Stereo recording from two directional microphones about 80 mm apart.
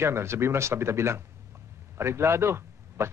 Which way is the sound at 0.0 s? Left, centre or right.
Right.